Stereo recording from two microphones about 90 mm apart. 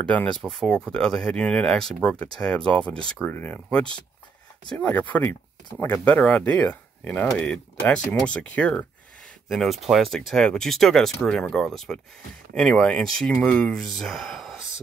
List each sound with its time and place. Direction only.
0.0 s speech: 15° left (ahead or behind)
0.4 s speech: 5° left (ahead or behind)
9.5 s speech: centre (ahead or behind)